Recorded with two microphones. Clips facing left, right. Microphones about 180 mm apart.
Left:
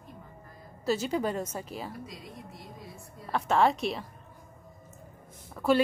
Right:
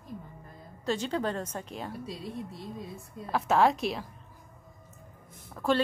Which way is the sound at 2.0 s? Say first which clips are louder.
Right 6 dB; 30° right (ahead or behind).